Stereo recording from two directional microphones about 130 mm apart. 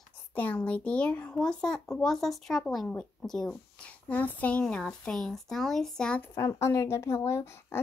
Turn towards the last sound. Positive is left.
turn(degrees=20)  # may be behind; listen again after turning